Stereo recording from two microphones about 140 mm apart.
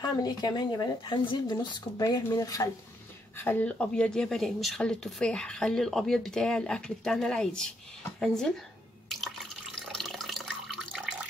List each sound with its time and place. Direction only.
0.0 s speech: 30° left (ahead or behind)
3.3 s speech: 15° left (ahead or behind)
9.1 s water: centre (ahead or behind)